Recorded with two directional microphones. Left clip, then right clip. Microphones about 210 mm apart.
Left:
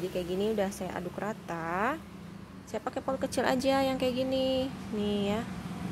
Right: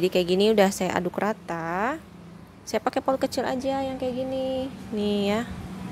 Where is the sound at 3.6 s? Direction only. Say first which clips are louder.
Even; 5° right (ahead or behind).